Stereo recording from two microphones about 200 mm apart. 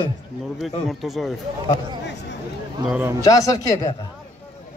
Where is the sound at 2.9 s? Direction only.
10° right (ahead or behind).